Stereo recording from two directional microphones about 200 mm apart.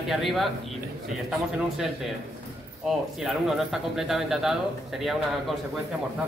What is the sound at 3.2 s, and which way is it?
Speech, centre (ahead or behind).